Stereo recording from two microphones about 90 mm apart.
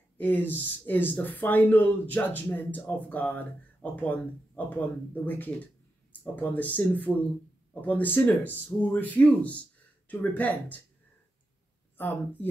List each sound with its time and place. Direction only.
0.2 s speech: 20° left (ahead or behind)